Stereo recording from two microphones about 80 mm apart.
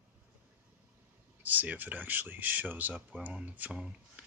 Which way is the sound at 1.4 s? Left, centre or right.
Right.